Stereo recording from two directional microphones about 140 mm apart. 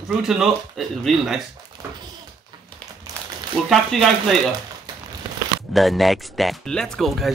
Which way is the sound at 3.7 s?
Centre (ahead or behind).